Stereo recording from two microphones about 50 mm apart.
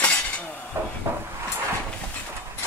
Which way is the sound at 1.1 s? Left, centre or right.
Right.